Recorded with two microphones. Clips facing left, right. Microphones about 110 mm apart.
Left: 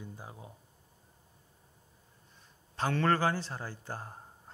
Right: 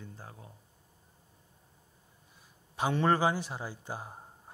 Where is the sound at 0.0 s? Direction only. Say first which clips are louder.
Left 2 dB; 15° left (ahead or behind).